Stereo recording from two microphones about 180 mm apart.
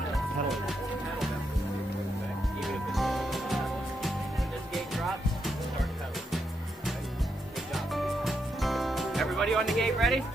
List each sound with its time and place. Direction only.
2.6 s music: centre (ahead or behind)
7.7 s music: centre (ahead or behind)